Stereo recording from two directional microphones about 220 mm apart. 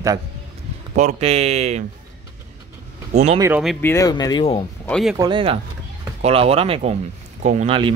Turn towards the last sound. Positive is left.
turn(degrees=-25)  # may be behind; listen again after turning